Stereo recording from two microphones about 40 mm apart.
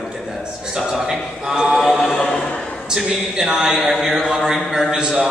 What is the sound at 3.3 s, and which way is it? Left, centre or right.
A man's voice, centre.